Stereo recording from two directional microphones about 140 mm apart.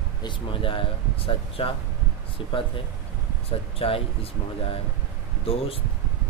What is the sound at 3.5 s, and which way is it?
Speech, 45° left (ahead or behind).